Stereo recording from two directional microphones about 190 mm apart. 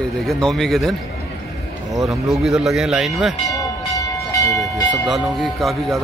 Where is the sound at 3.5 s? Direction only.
15° left (ahead or behind).